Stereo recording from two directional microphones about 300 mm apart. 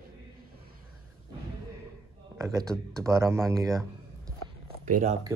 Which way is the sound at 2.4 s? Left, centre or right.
Centre.